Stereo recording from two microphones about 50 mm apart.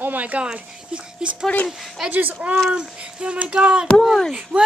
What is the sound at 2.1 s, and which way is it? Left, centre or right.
Speech, right.